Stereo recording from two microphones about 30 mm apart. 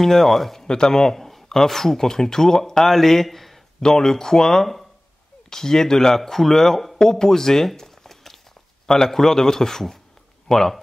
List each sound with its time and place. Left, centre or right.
0.0 s speech: centre
0.7 s speech: left; by 3.5 s centre
3.8 s speech: left
7.0 s speech: centre
7.7 s a sound: centre
8.8 s speech: centre